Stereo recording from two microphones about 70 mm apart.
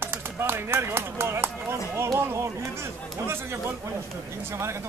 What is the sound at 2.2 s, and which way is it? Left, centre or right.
Speech, right.